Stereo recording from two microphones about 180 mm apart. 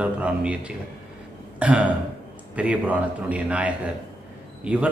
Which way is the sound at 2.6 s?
10° right (ahead or behind).